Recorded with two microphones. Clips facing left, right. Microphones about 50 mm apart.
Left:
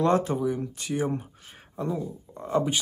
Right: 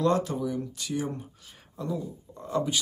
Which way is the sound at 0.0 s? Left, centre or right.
Left.